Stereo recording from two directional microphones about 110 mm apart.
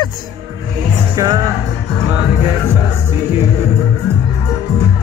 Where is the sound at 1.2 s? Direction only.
35° right (ahead or behind).